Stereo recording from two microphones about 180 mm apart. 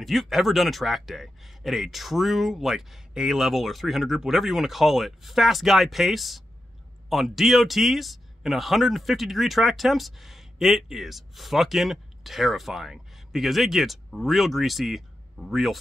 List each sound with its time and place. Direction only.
0.0 s speech: centre (ahead or behind)